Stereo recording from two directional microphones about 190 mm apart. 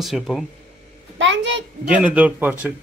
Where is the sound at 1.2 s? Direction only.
75° right (ahead or behind).